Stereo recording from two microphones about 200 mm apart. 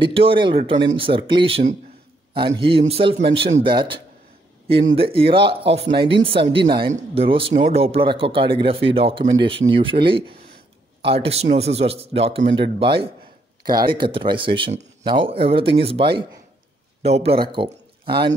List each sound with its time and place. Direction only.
0.0 s a man's voice: 25° right (ahead or behind)